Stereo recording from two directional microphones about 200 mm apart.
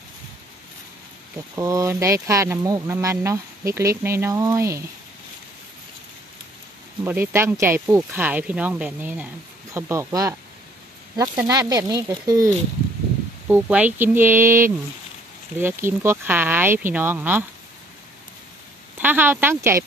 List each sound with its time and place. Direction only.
1.5 s speech: 15° right (ahead or behind)
7.1 s speech: 10° right (ahead or behind)
18.9 s speech: 10° right (ahead or behind)